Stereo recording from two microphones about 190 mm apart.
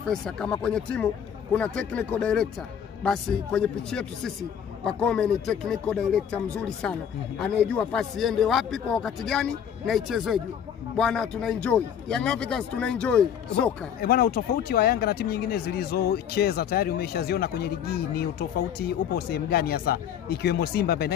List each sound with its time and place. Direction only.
0.1 s speech: 5° left (ahead or behind)
14.0 s speech: 50° left (ahead or behind)